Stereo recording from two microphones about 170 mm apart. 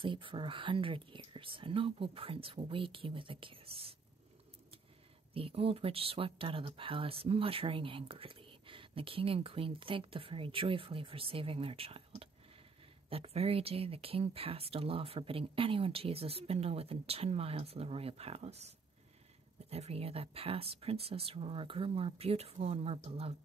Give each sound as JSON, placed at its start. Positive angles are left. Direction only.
{"t": 0.0, "sound": "speech", "side_deg": -30}
{"t": 5.3, "sound": "speech", "side_deg": -35}
{"t": 19.7, "sound": "speech", "side_deg": -35}